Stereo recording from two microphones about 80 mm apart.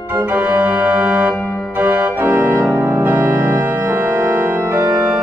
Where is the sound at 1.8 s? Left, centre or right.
Right.